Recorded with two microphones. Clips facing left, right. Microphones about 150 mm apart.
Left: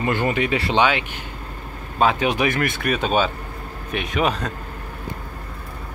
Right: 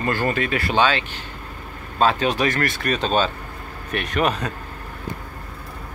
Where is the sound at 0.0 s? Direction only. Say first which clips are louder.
Left 1 dB; 20° left (ahead or behind).